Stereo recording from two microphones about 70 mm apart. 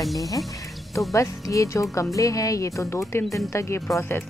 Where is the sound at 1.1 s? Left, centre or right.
Left.